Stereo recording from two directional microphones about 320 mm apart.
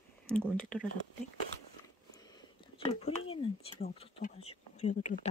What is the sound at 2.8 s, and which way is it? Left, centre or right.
Speech, centre.